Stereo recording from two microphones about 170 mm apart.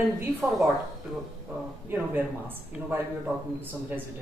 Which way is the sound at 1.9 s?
10° right (ahead or behind).